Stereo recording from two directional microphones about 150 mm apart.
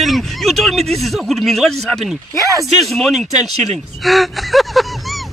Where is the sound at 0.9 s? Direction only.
Centre (ahead or behind).